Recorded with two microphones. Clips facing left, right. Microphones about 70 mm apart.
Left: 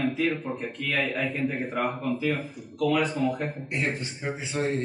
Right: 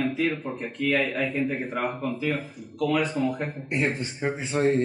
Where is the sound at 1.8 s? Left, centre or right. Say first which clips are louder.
Left 1 dB; centre.